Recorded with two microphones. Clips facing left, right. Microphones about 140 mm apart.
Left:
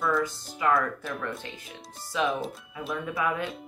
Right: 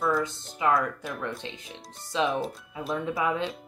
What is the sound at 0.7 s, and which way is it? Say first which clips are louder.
Speech: even; centre (ahead or behind).